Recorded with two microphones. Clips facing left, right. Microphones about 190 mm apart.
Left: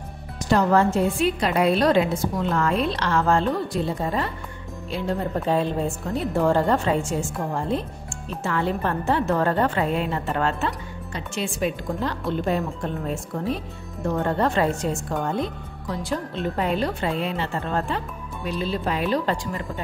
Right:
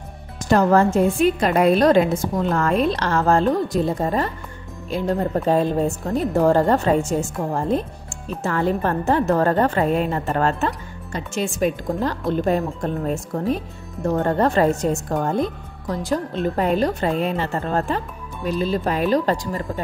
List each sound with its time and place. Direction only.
0.5 s a woman's voice: 45° right (ahead or behind)